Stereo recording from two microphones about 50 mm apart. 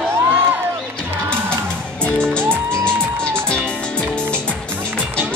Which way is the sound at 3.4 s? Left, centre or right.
Centre.